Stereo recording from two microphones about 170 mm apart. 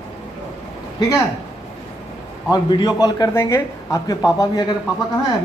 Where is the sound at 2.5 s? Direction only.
25° left (ahead or behind).